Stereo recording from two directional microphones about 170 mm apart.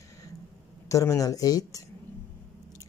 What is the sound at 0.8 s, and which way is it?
Speech, 20° left (ahead or behind).